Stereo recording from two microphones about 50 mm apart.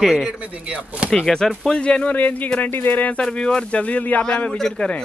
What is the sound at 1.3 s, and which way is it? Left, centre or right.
Speech, centre.